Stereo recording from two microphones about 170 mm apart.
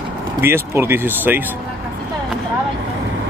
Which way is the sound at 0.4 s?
15° right (ahead or behind).